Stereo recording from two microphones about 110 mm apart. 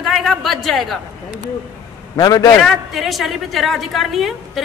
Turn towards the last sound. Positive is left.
turn(degrees=0)  # may be behind; listen again after turning